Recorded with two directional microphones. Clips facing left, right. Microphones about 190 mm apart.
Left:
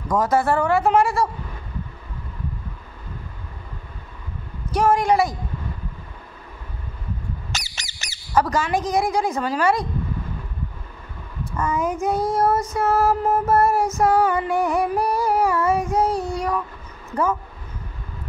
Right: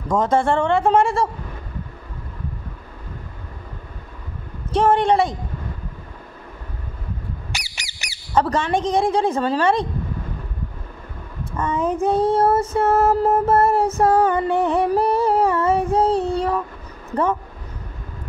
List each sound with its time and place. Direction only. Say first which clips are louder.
0.1 s a woman's voice: right 1 dB; 25° right (ahead or behind)
4.6 s a woman's voice: right 2 dB; 30° right (ahead or behind)
7.5 s squeak: left 1 dB; 15° right (ahead or behind)
8.4 s a woman's voice: right 1 dB; 30° right (ahead or behind)
11.5 s a woman's voice: right 2 dB; 30° right (ahead or behind)
12.7 s music: right 3 dB; 30° right (ahead or behind)